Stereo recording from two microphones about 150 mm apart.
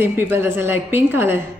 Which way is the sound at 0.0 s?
15° right (ahead or behind).